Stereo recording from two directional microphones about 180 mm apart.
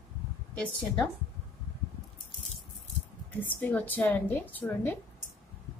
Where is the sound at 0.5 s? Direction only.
5° left (ahead or behind).